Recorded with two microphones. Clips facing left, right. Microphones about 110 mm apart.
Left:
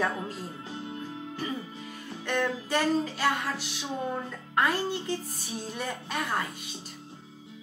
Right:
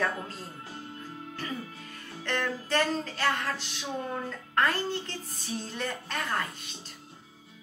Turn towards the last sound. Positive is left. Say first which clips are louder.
# left 1 dB
turn(degrees=10)  # may be behind; listen again after turning